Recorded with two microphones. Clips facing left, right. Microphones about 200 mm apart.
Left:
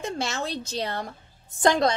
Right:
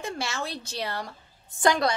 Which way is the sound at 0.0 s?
20° left (ahead or behind).